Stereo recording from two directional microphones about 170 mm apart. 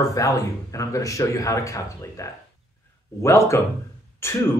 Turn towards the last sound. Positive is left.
turn(degrees=15)  # may be behind; listen again after turning